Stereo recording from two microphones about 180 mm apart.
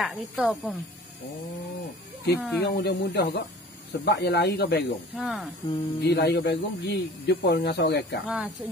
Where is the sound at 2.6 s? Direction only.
65° left (ahead or behind).